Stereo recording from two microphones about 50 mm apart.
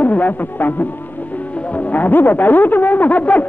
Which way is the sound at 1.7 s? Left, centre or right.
Left.